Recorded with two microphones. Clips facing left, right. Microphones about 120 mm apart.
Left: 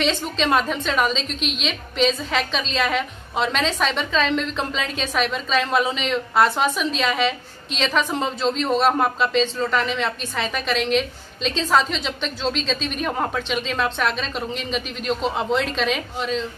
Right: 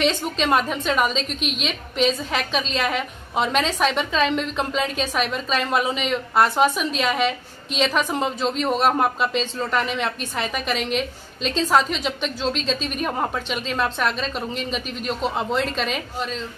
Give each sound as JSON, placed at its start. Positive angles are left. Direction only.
{"t": 0.0, "sound": "a woman's voice", "side_deg": -5}
{"t": 1.1, "sound": "a woman's voice", "side_deg": -50}
{"t": 2.0, "sound": "a woman's voice", "side_deg": -5}